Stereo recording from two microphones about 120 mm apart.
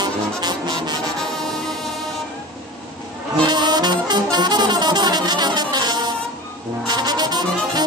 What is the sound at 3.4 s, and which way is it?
Music, 35° right (ahead or behind).